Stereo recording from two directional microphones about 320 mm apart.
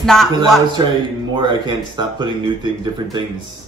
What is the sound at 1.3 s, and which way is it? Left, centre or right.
Speech, centre.